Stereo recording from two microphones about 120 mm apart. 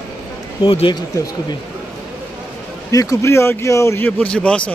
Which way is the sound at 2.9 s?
30° left (ahead or behind).